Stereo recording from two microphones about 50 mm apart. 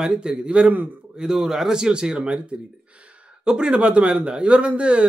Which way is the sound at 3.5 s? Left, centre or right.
Centre.